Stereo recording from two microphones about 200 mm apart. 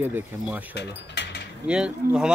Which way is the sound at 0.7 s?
60° left (ahead or behind).